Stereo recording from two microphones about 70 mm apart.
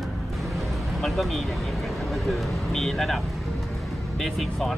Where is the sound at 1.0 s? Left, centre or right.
Centre.